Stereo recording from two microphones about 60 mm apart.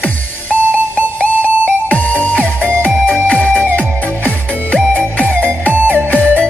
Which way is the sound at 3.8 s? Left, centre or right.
Left.